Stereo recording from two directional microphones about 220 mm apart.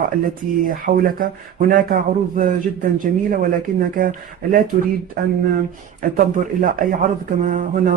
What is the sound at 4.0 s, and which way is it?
Speech, 40° right (ahead or behind).